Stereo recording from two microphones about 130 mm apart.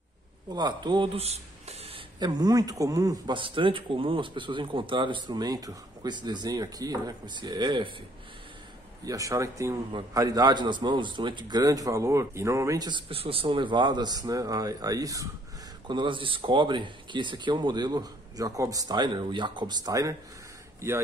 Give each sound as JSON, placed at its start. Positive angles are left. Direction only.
{"t": 0.5, "sound": "speech", "side_deg": -30}
{"t": 2.1, "sound": "speech", "side_deg": -30}
{"t": 9.0, "sound": "speech", "side_deg": -25}
{"t": 13.1, "sound": "speech", "side_deg": -45}
{"t": 15.9, "sound": "speech", "side_deg": -40}